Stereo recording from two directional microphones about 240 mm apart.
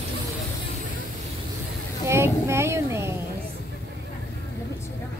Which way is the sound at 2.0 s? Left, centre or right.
Centre.